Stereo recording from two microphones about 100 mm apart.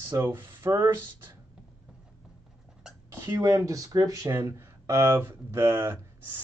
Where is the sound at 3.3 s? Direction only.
35° right (ahead or behind).